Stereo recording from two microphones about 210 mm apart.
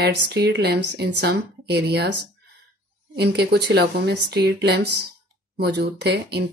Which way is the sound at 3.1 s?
50° right (ahead or behind).